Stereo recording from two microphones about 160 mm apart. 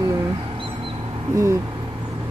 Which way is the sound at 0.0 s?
25° right (ahead or behind).